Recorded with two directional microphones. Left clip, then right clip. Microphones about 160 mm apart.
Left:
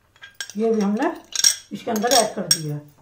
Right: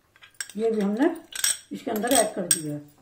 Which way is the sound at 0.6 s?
25° right (ahead or behind).